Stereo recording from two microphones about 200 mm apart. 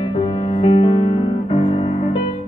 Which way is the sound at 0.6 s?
30° left (ahead or behind).